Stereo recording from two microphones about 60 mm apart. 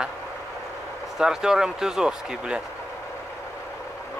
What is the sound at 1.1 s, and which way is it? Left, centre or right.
Speech, centre.